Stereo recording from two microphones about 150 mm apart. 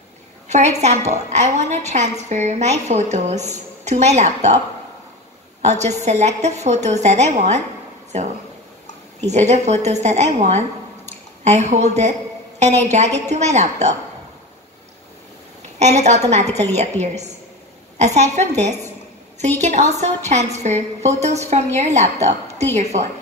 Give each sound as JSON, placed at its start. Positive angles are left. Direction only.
{"t": 0.5, "sound": "a woman's voice", "side_deg": -50}
{"t": 5.6, "sound": "a woman's voice", "side_deg": -50}
{"t": 15.8, "sound": "a woman's voice", "side_deg": -50}